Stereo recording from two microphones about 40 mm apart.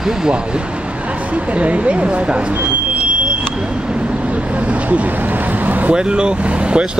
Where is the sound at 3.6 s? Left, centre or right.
Right.